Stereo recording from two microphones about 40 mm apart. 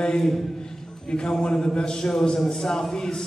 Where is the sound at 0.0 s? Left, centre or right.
Centre.